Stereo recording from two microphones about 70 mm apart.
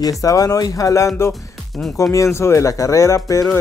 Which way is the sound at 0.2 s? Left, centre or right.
Left.